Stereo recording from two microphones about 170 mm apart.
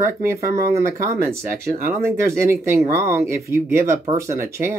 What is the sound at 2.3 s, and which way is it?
Speech, 15° right (ahead or behind).